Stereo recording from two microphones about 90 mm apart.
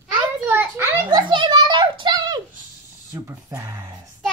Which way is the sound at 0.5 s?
25° right (ahead or behind).